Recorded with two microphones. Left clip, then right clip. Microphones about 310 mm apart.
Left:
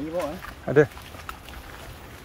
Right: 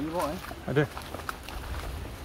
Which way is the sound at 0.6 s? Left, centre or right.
Centre.